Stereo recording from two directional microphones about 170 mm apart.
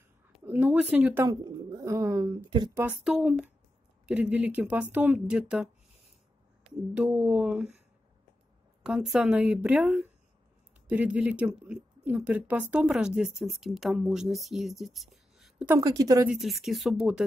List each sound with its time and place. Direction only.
0.5 s speech: 10° right (ahead or behind)
1.2 s speech: 25° right (ahead or behind)
2.8 s speech: 5° right (ahead or behind)
8.8 s speech: centre (ahead or behind)
15.7 s speech: 20° right (ahead or behind)
16.3 s speech: centre (ahead or behind)